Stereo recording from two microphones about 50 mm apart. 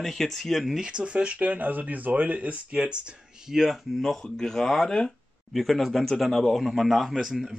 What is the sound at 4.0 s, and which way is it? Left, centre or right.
Speech, centre.